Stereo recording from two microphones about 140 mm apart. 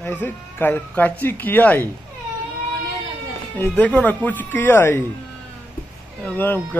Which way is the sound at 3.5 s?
15° left (ahead or behind).